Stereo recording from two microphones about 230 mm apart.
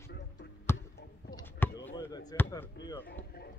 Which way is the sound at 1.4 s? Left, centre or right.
Centre.